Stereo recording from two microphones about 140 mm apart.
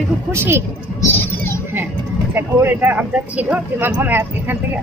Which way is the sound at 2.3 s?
15° right (ahead or behind).